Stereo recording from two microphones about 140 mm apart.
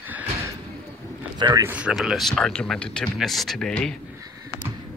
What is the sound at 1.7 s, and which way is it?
Speech, 10° right (ahead or behind).